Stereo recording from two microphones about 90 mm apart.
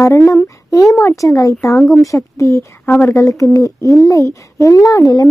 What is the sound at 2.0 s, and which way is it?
Speech, 35° left (ahead or behind).